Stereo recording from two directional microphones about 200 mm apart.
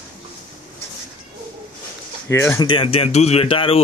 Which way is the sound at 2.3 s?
15° left (ahead or behind).